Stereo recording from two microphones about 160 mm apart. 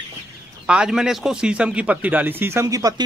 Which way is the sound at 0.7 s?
5° right (ahead or behind).